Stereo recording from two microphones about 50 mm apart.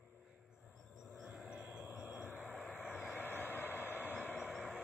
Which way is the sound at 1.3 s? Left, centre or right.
Centre.